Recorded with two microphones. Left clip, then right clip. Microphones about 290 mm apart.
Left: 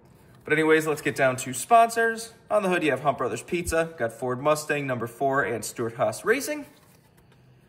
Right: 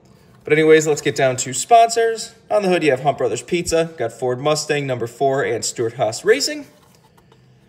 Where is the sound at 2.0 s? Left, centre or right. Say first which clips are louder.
Right 6 dB; left.